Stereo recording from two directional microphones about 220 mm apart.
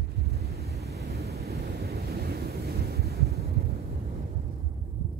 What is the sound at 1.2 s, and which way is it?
Waves, 45° right (ahead or behind).